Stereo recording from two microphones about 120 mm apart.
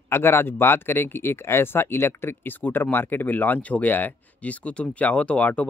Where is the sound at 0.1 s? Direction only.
20° left (ahead or behind).